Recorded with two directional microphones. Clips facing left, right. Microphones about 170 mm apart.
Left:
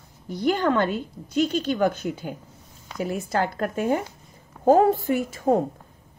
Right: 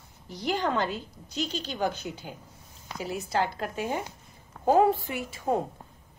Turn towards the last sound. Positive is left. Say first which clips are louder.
# left 7 dB
turn(degrees=45)  # may be behind; listen again after turning